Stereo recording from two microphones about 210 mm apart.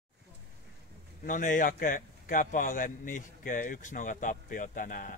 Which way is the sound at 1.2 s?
40° left (ahead or behind).